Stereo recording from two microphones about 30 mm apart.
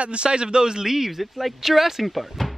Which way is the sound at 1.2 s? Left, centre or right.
Centre.